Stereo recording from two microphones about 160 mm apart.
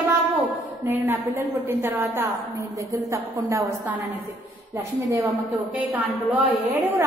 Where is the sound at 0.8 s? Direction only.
15° right (ahead or behind).